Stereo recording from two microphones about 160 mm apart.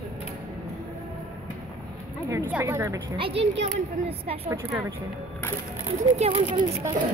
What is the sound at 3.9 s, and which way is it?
Speech, 40° right (ahead or behind).